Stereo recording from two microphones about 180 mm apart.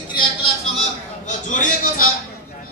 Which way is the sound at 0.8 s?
45° left (ahead or behind).